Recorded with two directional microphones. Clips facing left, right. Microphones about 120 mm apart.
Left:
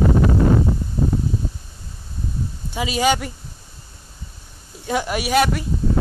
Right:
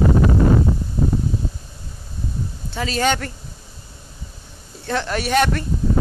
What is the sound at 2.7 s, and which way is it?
Speech, 10° left (ahead or behind).